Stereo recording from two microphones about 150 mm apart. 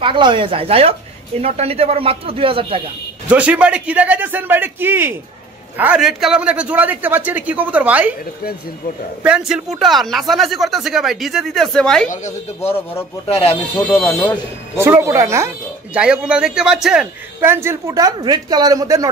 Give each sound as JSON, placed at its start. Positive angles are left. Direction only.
{"t": 0.0, "sound": "speech", "side_deg": -35}
{"t": 3.3, "sound": "a man's voice", "side_deg": -10}
{"t": 9.2, "sound": "speech", "side_deg": -5}
{"t": 12.6, "sound": "speech", "side_deg": 15}
{"t": 13.3, "sound": "speech", "side_deg": 40}
{"t": 13.7, "sound": "speech", "side_deg": 10}
{"t": 14.8, "sound": "speech", "side_deg": -20}
{"t": 15.9, "sound": "a man's voice", "side_deg": -5}